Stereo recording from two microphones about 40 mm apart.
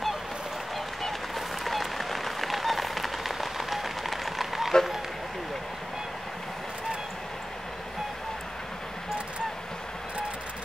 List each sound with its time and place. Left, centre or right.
1.0 s applause: centre